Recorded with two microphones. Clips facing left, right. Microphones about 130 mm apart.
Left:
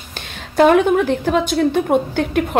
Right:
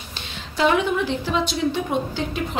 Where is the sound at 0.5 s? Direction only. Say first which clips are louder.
Left 8 dB; 50° left (ahead or behind).